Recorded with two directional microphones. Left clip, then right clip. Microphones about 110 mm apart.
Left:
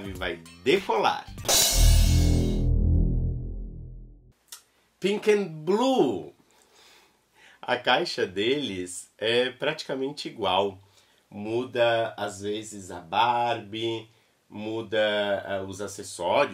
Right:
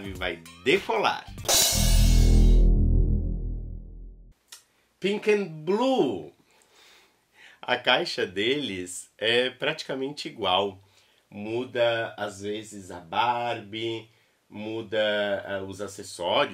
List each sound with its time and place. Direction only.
0.0 s speech: centre (ahead or behind)
0.4 s speech: 15° right (ahead or behind)
0.7 s music: centre (ahead or behind)
4.5 s a sound: 5° left (ahead or behind)
5.0 s speech: 5° left (ahead or behind)
7.3 s speech: 5° right (ahead or behind)